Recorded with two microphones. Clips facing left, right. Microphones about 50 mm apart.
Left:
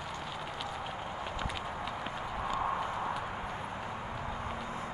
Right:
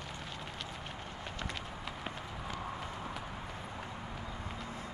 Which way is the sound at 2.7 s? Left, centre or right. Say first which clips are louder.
Left 8 dB; left.